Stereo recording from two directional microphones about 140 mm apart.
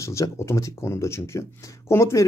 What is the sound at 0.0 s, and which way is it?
A man's voice, 20° left (ahead or behind).